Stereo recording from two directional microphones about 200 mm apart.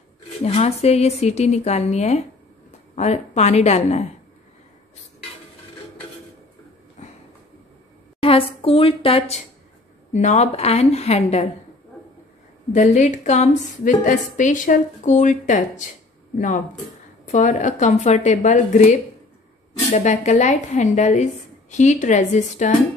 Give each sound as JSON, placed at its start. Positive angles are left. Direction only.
{"t": 0.4, "sound": "a woman's voice", "side_deg": 30}
{"t": 7.0, "sound": "a sound", "side_deg": 35}
{"t": 8.2, "sound": "a woman's voice", "side_deg": 30}
{"t": 12.7, "sound": "a woman's voice", "side_deg": 40}